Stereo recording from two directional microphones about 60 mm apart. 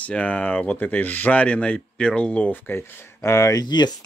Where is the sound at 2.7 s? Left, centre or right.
Left.